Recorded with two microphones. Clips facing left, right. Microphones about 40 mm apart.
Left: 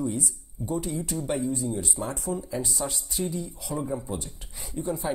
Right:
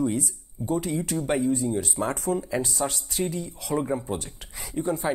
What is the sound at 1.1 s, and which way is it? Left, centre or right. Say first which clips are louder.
Speech: right 4 dB; right.